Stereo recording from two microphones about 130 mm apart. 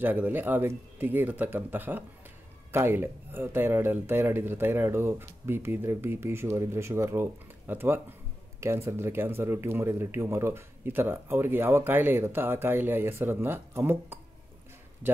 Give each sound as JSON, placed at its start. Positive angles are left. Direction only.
{"t": 0.0, "sound": "speech", "side_deg": -15}